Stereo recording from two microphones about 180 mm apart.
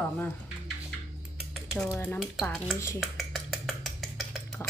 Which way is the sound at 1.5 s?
Centre (ahead or behind).